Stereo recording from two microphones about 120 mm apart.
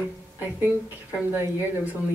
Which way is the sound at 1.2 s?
20° right (ahead or behind).